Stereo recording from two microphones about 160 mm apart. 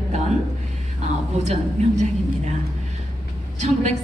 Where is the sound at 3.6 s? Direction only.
45° right (ahead or behind).